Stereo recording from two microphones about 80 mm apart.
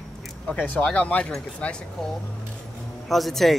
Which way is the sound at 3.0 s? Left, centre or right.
Centre.